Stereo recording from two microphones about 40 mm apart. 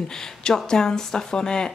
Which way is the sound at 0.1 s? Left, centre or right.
Centre.